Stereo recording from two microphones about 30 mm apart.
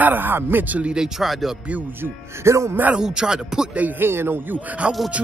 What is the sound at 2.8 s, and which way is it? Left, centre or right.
Speech, right.